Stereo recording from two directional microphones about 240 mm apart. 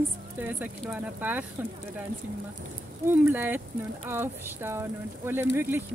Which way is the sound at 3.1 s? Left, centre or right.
Centre.